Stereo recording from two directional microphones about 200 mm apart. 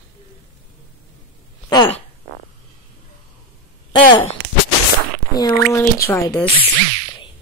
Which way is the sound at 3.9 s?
25° left (ahead or behind).